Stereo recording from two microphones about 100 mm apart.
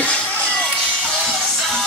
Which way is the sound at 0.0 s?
10° left (ahead or behind).